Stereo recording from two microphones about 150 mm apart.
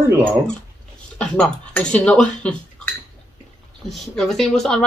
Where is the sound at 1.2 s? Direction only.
10° left (ahead or behind).